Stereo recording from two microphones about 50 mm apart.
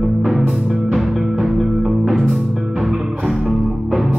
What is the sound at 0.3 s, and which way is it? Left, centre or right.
Music, centre.